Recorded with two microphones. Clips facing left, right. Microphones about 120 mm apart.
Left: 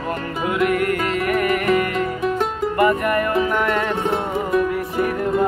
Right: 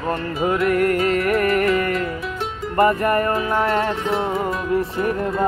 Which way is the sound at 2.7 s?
35° right (ahead or behind).